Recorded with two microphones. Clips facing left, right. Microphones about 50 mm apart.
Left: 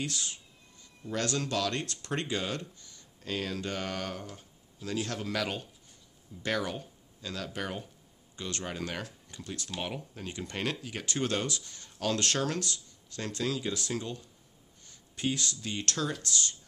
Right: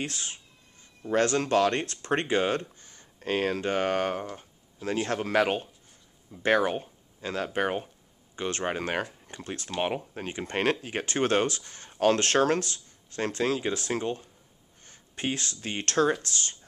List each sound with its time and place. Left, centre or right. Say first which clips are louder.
0.0 s speech: right 2 dB; right